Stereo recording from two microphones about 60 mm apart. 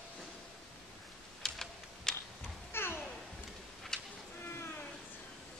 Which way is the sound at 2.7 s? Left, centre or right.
Left.